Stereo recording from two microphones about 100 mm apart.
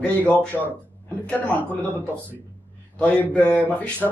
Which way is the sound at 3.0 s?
15° left (ahead or behind).